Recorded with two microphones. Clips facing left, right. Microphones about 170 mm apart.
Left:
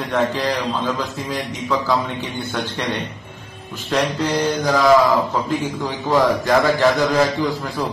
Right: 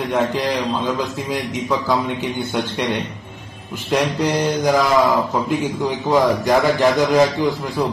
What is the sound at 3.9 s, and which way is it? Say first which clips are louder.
Speech: right 1 dB; 15° right (ahead or behind).